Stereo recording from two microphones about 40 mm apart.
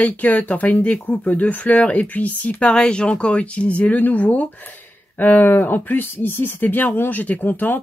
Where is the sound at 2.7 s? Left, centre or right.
Left.